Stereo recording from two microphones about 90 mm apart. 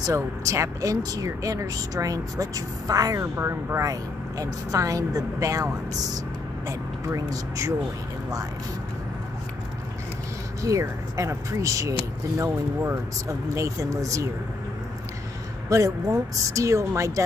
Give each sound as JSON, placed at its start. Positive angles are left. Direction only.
{"t": 0.0, "sound": "speech", "side_deg": -35}
{"t": 10.6, "sound": "speech", "side_deg": -35}
{"t": 15.7, "sound": "speech", "side_deg": -35}